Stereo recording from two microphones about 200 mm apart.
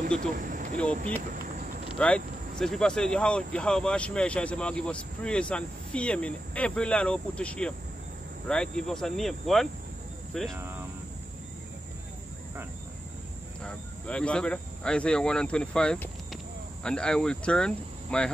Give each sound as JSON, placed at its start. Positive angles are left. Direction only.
{"t": 0.4, "sound": "a sound", "side_deg": -40}
{"t": 0.7, "sound": "speech", "side_deg": 5}
{"t": 1.3, "sound": "cricket", "side_deg": -45}
{"t": 2.0, "sound": "speech", "side_deg": 5}
{"t": 13.6, "sound": "speech", "side_deg": 5}